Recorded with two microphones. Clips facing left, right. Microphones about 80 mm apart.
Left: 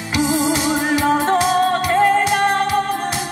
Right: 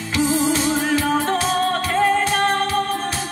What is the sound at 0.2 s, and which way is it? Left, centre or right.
Music, centre.